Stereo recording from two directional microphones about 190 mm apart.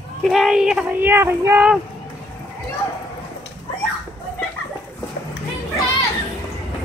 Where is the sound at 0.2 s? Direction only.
Centre (ahead or behind).